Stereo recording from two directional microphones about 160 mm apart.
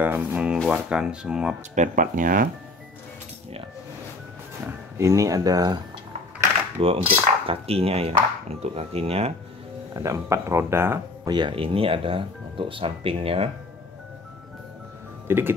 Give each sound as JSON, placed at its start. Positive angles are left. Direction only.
{"t": 0.0, "sound": "speech", "side_deg": -10}
{"t": 1.8, "sound": "speech", "side_deg": -55}
{"t": 4.9, "sound": "speech", "side_deg": -20}
{"t": 6.8, "sound": "speech", "side_deg": -35}
{"t": 9.9, "sound": "speech", "side_deg": -20}
{"t": 11.2, "sound": "speech", "side_deg": -30}
{"t": 15.2, "sound": "speech", "side_deg": -15}